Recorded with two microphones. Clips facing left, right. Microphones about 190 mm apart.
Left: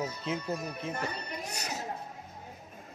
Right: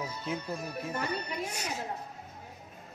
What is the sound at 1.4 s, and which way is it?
Speech, 40° left (ahead or behind).